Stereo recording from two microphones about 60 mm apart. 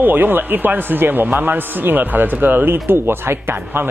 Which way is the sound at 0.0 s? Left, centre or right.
Right.